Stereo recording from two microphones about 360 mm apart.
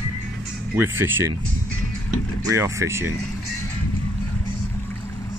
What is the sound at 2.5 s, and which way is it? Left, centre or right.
Speech, centre.